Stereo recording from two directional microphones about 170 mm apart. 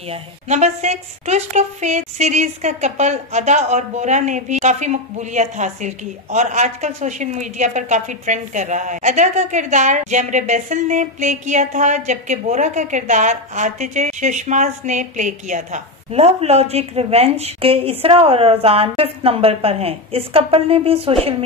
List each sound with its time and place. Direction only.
0.1 s a woman's voice: 40° right (ahead or behind)